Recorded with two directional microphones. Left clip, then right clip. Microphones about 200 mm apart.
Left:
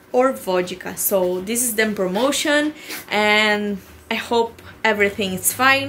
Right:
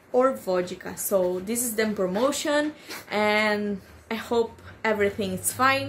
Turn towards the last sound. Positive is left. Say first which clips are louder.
# left 6 dB
turn(degrees=-5)  # may be behind; listen again after turning